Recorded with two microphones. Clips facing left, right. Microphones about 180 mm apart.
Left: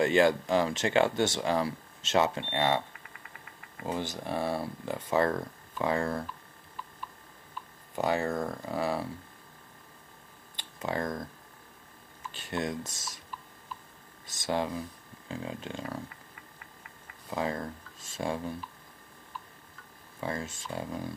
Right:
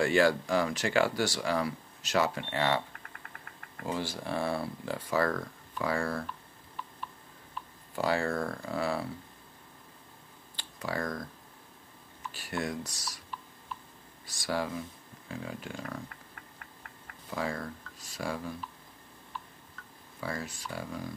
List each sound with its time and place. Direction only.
0.0 s speech: 20° left (ahead or behind)
3.8 s speech: 20° left (ahead or behind)
7.9 s speech: 20° left (ahead or behind)
10.5 s tick-tock: 20° left (ahead or behind)
12.3 s speech: 20° left (ahead or behind)
14.2 s speech: 20° left (ahead or behind)
17.3 s speech: 25° left (ahead or behind)
20.2 s speech: 25° left (ahead or behind)